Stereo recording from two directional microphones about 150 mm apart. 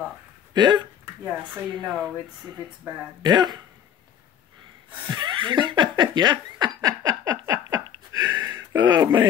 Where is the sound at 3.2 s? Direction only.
30° right (ahead or behind).